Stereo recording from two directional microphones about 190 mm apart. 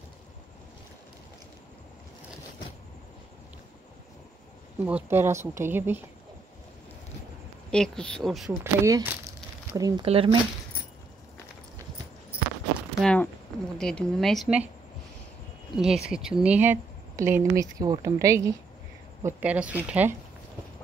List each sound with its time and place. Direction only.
4.8 s a woman's voice: 10° right (ahead or behind)
7.7 s speech: 5° left (ahead or behind)
8.5 s a woman's voice: 15° right (ahead or behind)
10.0 s speech: 30° right (ahead or behind)
13.0 s speech: 5° left (ahead or behind)
15.7 s a woman's voice: 5° right (ahead or behind)